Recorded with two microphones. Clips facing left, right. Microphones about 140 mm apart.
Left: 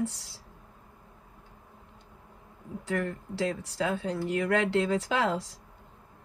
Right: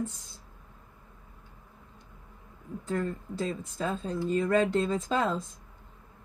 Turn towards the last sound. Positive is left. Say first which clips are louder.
# even
turn(degrees=80)